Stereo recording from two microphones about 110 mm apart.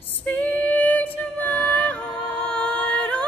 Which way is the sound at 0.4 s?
15° left (ahead or behind).